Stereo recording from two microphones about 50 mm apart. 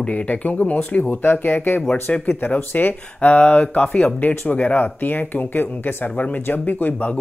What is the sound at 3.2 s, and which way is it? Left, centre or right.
Speech, left.